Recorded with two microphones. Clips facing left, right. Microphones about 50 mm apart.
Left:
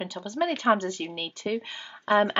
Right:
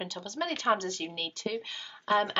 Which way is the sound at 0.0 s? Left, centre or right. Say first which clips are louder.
Left 6 dB; centre.